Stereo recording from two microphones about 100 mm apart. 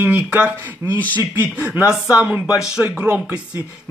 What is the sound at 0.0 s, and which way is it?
Speech, 15° right (ahead or behind).